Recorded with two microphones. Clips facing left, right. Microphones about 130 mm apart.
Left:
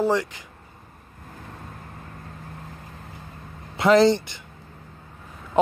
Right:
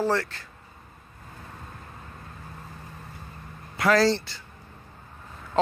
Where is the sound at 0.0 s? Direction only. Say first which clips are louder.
Left 3 dB; 15° left (ahead or behind).